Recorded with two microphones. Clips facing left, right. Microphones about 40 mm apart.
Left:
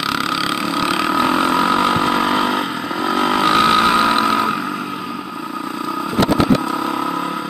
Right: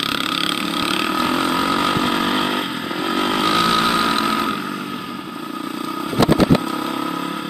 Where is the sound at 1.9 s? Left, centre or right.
Centre.